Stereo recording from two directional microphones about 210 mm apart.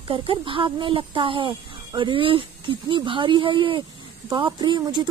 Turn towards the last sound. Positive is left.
turn(degrees=-20)  # may be behind; listen again after turning